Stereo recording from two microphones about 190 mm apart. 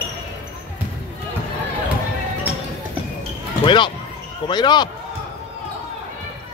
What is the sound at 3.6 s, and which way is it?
Speech, 25° left (ahead or behind).